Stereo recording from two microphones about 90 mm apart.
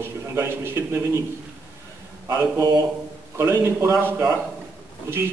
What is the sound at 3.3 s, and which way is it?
A man's voice, 30° right (ahead or behind).